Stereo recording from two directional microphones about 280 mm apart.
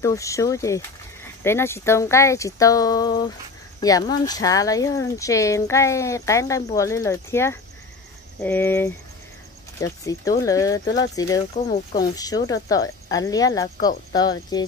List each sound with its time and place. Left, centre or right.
0.0 s speech: centre
11.5 s speech: left
12.2 s speech: centre